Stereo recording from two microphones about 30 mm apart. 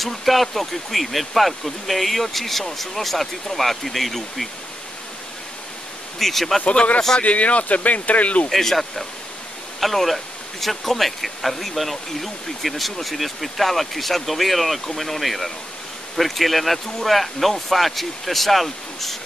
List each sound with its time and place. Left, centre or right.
0.0 s speech: centre
6.1 s speech: centre
7.2 s speech: left
8.5 s speech: centre